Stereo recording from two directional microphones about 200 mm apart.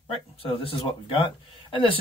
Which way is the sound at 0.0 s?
25° left (ahead or behind).